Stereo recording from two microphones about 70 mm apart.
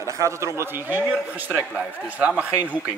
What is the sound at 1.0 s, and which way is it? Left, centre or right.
A man's voice, centre.